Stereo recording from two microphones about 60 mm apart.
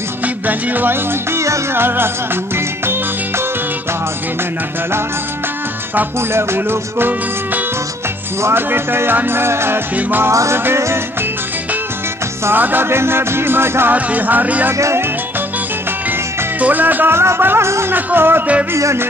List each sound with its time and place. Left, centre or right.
0.5 s music: right
1.3 s music: right
1.7 s music: right
6.3 s music: right
10.3 s music: right
12.4 s music: right
13.9 s music: right
14.8 s music: right
16.5 s music: right
17.9 s music: right